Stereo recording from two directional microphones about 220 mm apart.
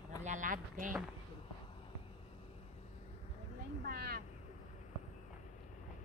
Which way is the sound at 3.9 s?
45° right (ahead or behind).